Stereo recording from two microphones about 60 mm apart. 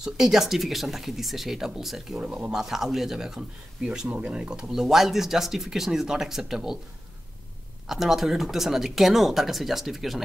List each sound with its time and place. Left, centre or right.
0.0 s speech: centre
2.1 s speech: right
2.5 s speech: centre
4.1 s speech: right
4.4 s speech: centre
7.9 s speech: centre